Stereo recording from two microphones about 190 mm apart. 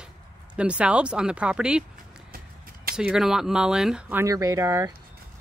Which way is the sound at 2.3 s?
50° right (ahead or behind).